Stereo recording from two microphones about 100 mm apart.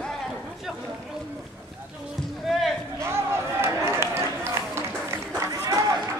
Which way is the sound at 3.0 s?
25° right (ahead or behind).